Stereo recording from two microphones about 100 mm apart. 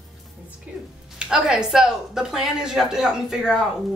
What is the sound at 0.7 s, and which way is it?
Speech, 15° right (ahead or behind).